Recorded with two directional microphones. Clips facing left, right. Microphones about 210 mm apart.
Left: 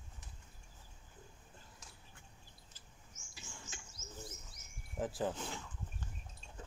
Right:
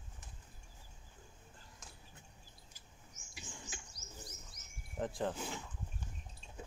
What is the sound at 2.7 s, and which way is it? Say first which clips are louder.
Bird: right 1 dB; 15° right (ahead or behind).